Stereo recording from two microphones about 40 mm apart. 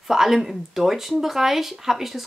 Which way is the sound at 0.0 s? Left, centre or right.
Centre.